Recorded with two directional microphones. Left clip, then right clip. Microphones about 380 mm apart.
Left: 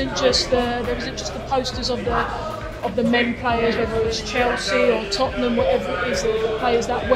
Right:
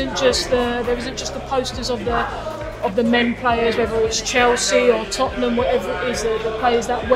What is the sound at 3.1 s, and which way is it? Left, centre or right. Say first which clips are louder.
Speech: right 1 dB; centre.